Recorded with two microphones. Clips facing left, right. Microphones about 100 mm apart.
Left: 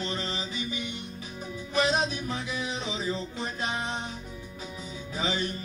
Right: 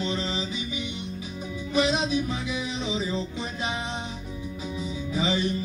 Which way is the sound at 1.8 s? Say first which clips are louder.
Right 3 dB; 45° left (ahead or behind).